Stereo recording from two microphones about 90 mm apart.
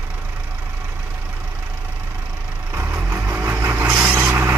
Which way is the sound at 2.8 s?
20° right (ahead or behind).